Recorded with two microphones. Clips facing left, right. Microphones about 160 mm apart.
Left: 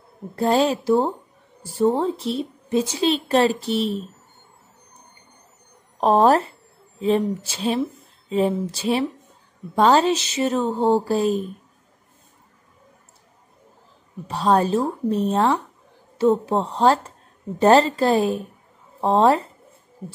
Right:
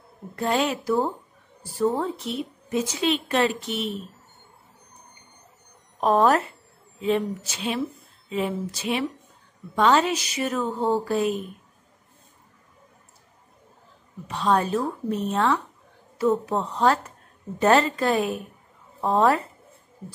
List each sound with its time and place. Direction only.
0.4 s a woman's voice: 30° left (ahead or behind)
5.9 s a woman's voice: 30° left (ahead or behind)
14.2 s a woman's voice: 35° left (ahead or behind)